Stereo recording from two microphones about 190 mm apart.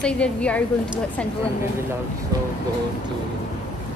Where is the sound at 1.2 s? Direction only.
5° left (ahead or behind).